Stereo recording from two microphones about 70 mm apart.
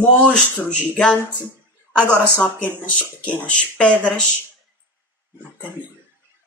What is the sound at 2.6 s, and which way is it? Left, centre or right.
Speech, centre.